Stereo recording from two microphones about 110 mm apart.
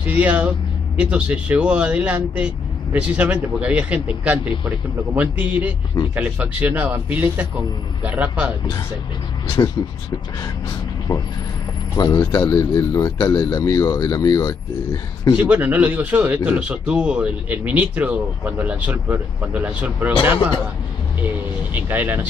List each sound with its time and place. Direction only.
0.0 s speech: 15° right (ahead or behind)
11.1 s speech: 30° left (ahead or behind)
12.0 s a man's voice: 40° left (ahead or behind)
15.3 s speech: 10° right (ahead or behind)
21.7 s speech: 15° right (ahead or behind)